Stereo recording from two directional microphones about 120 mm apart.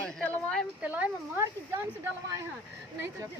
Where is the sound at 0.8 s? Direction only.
15° right (ahead or behind).